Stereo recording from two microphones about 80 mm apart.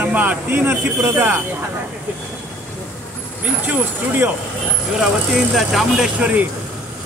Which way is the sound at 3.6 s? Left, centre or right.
Right.